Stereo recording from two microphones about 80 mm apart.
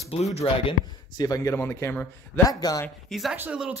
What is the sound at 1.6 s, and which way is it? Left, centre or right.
Speech, left.